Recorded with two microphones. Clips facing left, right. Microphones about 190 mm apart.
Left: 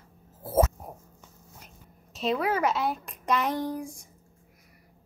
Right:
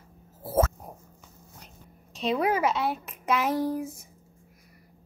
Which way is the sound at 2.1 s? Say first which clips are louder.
Even; centre (ahead or behind).